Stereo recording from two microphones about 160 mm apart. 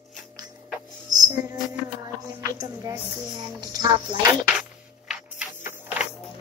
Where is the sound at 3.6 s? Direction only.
25° right (ahead or behind).